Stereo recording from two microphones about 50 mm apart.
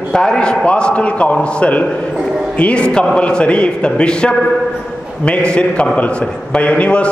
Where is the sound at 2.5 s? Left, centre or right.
Left.